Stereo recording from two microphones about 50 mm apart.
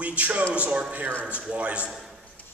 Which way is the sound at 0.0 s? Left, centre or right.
Right.